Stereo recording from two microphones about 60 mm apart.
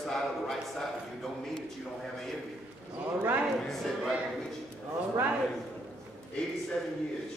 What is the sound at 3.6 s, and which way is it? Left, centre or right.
Speech, centre.